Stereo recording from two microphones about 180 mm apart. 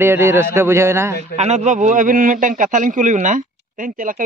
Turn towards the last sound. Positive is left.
turn(degrees=-50)  # may be behind; listen again after turning